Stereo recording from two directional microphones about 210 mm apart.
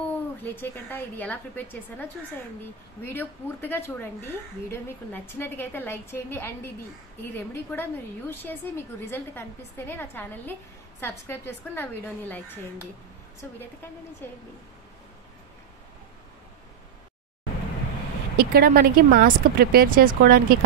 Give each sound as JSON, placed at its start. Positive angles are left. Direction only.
{"t": 0.4, "sound": "a woman's voice", "side_deg": 10}
{"t": 14.2, "sound": "a woman's voice", "side_deg": 10}
{"t": 18.3, "sound": "speech", "side_deg": -45}